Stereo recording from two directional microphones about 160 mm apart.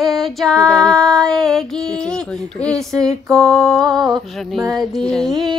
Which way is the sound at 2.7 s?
20° right (ahead or behind).